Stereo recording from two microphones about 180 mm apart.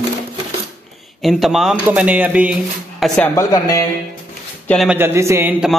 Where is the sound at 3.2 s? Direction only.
20° left (ahead or behind).